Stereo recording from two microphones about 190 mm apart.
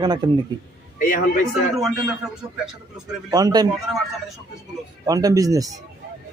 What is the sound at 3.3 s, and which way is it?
Speech, 20° right (ahead or behind).